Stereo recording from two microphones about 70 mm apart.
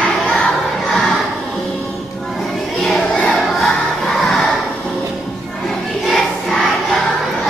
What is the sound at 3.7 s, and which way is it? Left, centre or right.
Crowd, centre.